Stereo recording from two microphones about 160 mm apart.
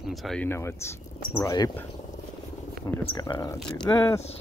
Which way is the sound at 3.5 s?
5° left (ahead or behind).